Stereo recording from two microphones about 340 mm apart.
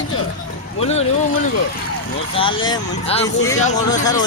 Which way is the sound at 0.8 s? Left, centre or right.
Centre.